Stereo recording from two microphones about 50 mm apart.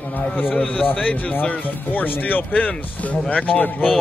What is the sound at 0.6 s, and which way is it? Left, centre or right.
A man's voice, left.